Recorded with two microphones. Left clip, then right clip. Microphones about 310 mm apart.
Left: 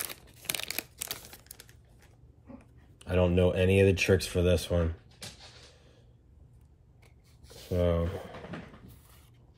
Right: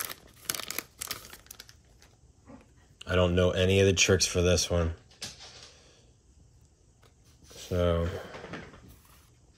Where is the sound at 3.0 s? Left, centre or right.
Centre.